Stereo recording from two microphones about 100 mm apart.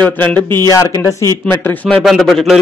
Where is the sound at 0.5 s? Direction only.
30° left (ahead or behind).